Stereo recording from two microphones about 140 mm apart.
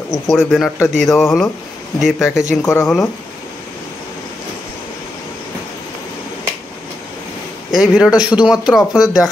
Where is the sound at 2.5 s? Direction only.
20° left (ahead or behind).